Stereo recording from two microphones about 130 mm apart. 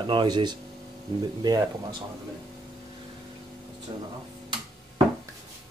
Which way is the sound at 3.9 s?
35° right (ahead or behind).